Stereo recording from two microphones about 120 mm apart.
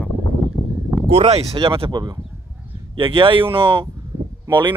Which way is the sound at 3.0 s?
45° right (ahead or behind).